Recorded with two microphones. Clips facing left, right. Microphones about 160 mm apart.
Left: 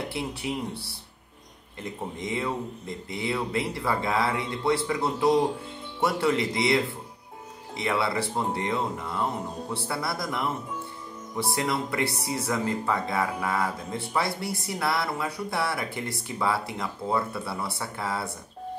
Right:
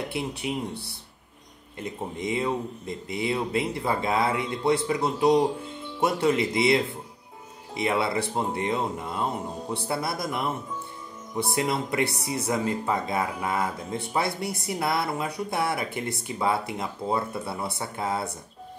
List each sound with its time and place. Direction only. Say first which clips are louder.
0.1 s speech: right 1 dB; 20° right (ahead or behind)
2.1 s speech: right 3 dB; 20° right (ahead or behind)